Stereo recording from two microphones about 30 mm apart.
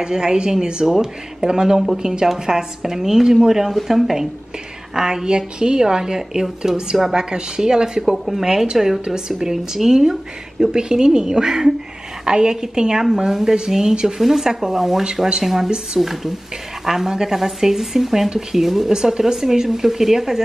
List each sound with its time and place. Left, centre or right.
0.0 s a woman's voice: right
4.9 s a woman's voice: centre
8.7 s speech: centre
9.0 s a woman's voice: right
18.9 s speech: centre